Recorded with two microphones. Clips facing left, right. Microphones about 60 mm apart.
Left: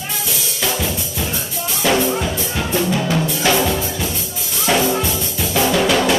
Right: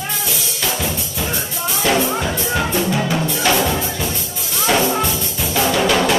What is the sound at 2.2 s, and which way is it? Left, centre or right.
Music, right.